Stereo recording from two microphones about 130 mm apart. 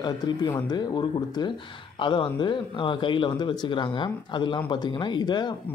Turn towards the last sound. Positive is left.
turn(degrees=35)  # may be behind; listen again after turning